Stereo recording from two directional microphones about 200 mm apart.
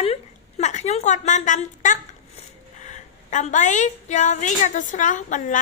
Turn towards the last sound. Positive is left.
turn(degrees=40)  # may be behind; listen again after turning